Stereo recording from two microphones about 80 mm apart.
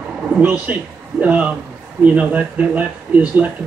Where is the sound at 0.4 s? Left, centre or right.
Right.